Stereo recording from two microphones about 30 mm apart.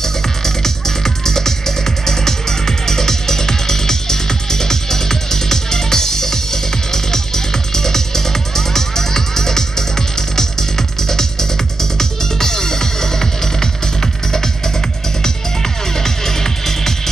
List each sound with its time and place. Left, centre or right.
0.0 s music: centre
15.2 s music: centre